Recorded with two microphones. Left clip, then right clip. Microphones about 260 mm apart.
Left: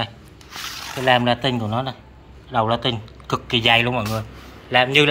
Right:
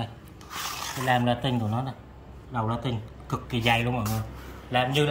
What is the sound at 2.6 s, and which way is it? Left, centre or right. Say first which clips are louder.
Speech: left 10 dB; centre.